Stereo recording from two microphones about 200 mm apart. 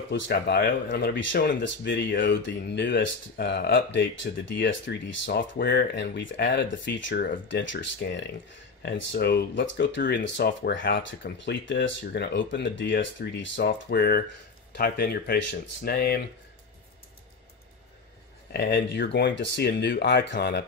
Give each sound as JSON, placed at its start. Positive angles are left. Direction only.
{"t": 0.1, "sound": "speech", "side_deg": 55}
{"t": 18.5, "sound": "speech", "side_deg": 60}